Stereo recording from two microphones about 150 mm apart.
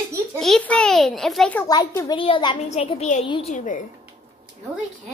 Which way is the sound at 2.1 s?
35° left (ahead or behind).